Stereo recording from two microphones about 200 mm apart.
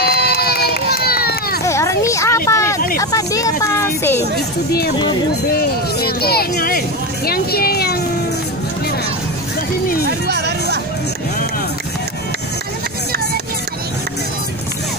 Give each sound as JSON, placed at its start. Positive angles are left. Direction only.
{"t": 0.0, "sound": "run", "side_deg": 50}
{"t": 1.6, "sound": "a sound", "side_deg": 15}
{"t": 3.0, "sound": "speech", "side_deg": 15}
{"t": 5.5, "sound": "speech", "side_deg": 50}
{"t": 10.0, "sound": "music", "side_deg": -55}